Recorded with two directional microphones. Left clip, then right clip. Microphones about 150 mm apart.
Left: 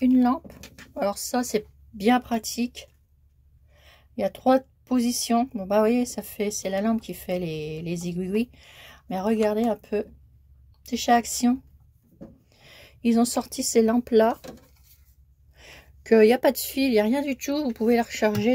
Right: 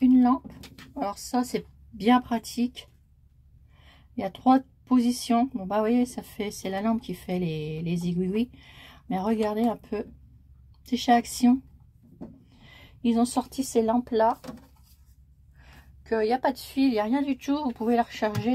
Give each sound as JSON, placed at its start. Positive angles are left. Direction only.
{"t": 0.0, "sound": "speech", "side_deg": 25}
{"t": 12.5, "sound": "speech", "side_deg": 20}
{"t": 15.5, "sound": "a woman's voice", "side_deg": 65}